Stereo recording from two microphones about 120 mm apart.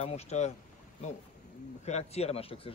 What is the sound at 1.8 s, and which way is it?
Speech, 65° left (ahead or behind).